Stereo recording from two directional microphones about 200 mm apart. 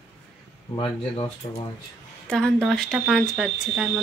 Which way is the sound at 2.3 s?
5° left (ahead or behind).